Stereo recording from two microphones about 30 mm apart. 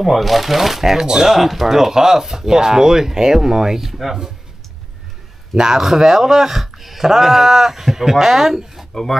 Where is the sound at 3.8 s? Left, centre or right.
Centre.